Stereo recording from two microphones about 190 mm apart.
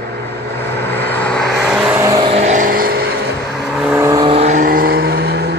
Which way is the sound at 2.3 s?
40° right (ahead or behind).